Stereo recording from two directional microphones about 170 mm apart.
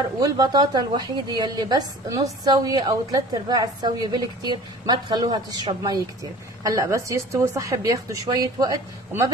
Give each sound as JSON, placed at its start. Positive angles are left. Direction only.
{"t": 0.2, "sound": "a woman's voice", "side_deg": -25}